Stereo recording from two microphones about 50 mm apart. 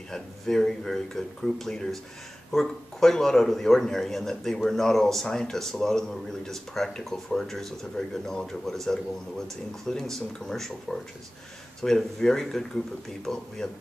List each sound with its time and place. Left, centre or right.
0.1 s speech: centre